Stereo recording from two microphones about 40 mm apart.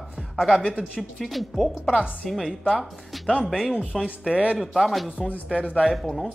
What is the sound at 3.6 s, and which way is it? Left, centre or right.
Speech, right.